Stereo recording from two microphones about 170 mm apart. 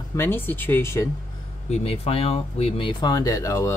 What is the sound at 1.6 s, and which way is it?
Speech, 40° left (ahead or behind).